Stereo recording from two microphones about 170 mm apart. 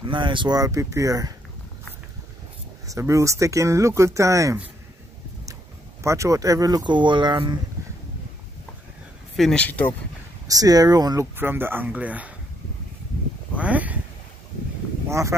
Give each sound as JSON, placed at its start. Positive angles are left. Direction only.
{"t": 0.0, "sound": "speech", "side_deg": -30}
{"t": 2.9, "sound": "speech", "side_deg": -15}
{"t": 6.0, "sound": "speech", "side_deg": -15}
{"t": 9.4, "sound": "speech", "side_deg": 5}
{"t": 10.4, "sound": "speech", "side_deg": -20}
{"t": 13.6, "sound": "a sound", "side_deg": -10}
{"t": 15.0, "sound": "speech", "side_deg": -15}